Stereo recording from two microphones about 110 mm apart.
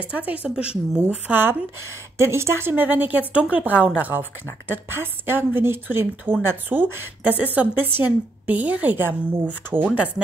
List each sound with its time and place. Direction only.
0.1 s a woman's voice: 15° right (ahead or behind)